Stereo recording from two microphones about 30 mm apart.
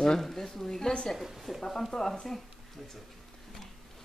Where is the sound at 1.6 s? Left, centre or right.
Centre.